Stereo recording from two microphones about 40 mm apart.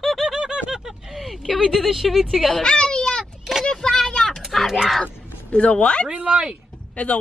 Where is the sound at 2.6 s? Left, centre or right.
Left.